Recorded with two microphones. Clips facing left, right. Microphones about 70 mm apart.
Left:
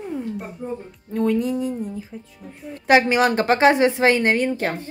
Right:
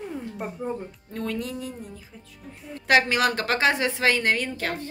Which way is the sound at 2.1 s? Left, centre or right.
Left.